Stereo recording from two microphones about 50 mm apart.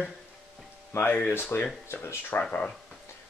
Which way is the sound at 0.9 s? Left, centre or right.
Left.